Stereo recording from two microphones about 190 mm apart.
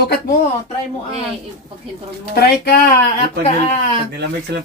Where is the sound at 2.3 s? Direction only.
55° left (ahead or behind).